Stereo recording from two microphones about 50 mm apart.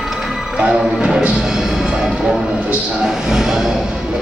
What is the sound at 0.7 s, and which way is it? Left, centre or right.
Music, centre.